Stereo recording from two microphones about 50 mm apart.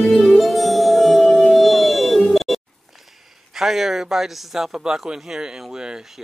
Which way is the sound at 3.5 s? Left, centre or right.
Centre.